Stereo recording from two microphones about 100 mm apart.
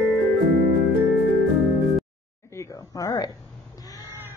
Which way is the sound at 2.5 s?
35° left (ahead or behind).